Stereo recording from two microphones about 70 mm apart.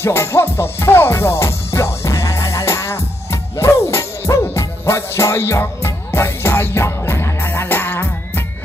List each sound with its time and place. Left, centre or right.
0.0 s music: left